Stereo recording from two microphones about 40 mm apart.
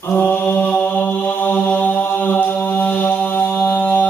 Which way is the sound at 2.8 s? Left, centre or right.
Left.